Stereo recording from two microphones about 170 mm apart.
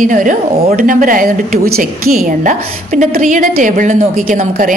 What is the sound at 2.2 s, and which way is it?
A woman's voice, 45° right (ahead or behind).